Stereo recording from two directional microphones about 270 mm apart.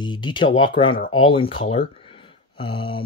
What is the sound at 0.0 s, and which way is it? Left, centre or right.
Speech, centre.